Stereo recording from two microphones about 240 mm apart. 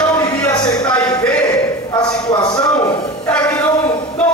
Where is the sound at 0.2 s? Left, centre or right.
Centre.